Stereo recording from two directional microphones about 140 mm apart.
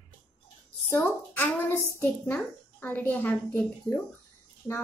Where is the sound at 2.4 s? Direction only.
10° left (ahead or behind).